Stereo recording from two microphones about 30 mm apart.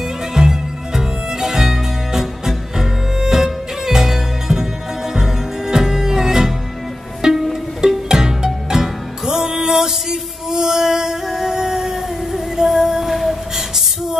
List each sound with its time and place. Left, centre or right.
0.3 s music: centre
11.2 s music: centre
11.5 s a sound: centre